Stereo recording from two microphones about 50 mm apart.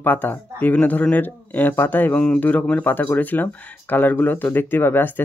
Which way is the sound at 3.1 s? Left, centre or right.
Left.